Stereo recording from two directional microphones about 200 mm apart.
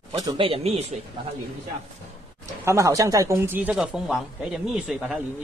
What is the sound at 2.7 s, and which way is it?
Speech, 15° right (ahead or behind).